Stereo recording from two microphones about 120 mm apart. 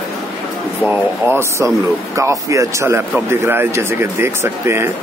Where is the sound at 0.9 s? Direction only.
20° right (ahead or behind).